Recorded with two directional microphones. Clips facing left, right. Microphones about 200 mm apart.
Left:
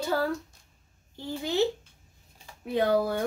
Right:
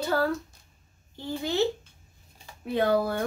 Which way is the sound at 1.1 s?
15° left (ahead or behind).